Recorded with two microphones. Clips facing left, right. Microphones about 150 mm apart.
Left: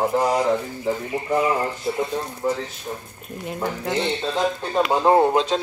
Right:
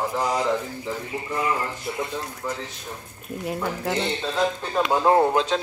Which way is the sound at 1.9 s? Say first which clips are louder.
Left 6 dB; 30° left (ahead or behind).